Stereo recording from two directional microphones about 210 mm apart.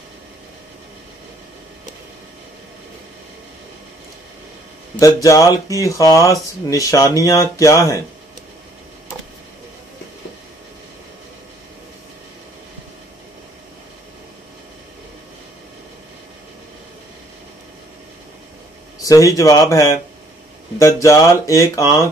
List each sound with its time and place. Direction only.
4.9 s speech: 15° left (ahead or behind)
19.0 s speech: 15° left (ahead or behind)